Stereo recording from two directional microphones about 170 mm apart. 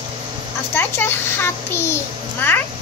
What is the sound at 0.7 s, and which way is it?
A child's voice, 15° left (ahead or behind).